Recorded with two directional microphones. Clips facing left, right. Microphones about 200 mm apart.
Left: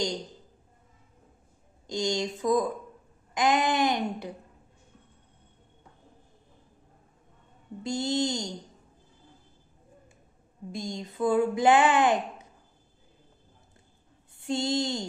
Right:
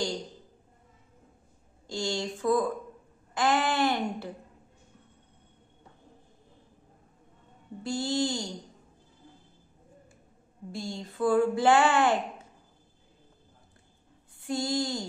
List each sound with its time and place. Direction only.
1.9 s speech: 20° left (ahead or behind)
7.8 s speech: 20° left (ahead or behind)
10.7 s speech: 20° left (ahead or behind)
14.4 s speech: 25° left (ahead or behind)